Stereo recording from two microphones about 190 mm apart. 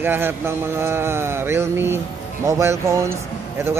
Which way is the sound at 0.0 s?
10° right (ahead or behind).